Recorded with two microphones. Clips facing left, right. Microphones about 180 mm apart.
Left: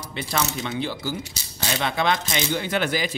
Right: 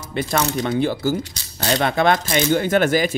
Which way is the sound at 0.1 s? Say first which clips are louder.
Right 6 dB; 50° right (ahead or behind).